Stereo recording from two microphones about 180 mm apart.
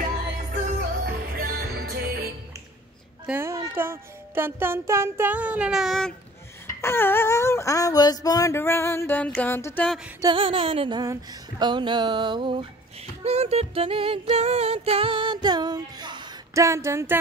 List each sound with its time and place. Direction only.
0.7 s music: 55° right (ahead or behind)
3.3 s speech: 15° right (ahead or behind); by 6.1 s centre (ahead or behind)
6.8 s a sound: 10° left (ahead or behind)
10.2 s music: 30° right (ahead or behind); by 17.2 s 15° right (ahead or behind)